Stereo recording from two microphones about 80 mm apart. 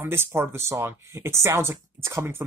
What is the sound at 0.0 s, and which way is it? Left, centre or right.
Speech, right.